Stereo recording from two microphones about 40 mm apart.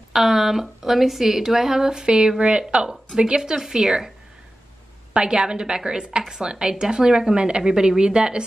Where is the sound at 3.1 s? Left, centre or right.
Centre.